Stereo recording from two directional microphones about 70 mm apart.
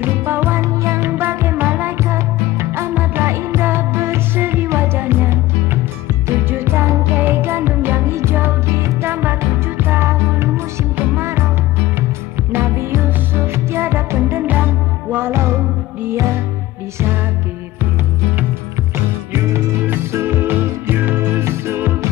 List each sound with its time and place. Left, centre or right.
0.0 s music: right
3.3 s music: right
9.1 s music: right
12.5 s music: right
19.3 s music: right